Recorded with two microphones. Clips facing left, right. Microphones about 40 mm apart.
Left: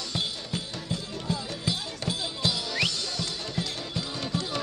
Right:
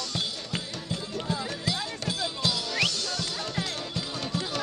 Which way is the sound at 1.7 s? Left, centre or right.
Centre.